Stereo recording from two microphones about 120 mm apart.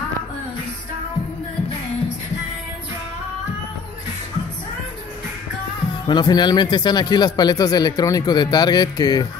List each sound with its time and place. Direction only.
6.0 s speech: 35° left (ahead or behind)